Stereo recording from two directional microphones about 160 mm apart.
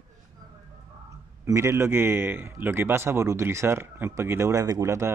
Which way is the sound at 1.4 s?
15° right (ahead or behind).